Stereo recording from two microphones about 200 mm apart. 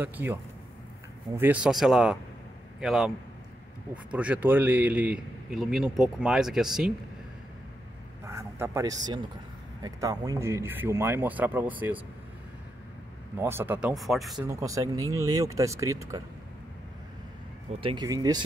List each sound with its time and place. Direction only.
0.0 s a man's voice: 10° right (ahead or behind)
8.3 s a man's voice: 15° right (ahead or behind)
13.4 s a man's voice: 10° right (ahead or behind)
14.4 s a man's voice: 15° right (ahead or behind)
17.7 s speech: 25° right (ahead or behind)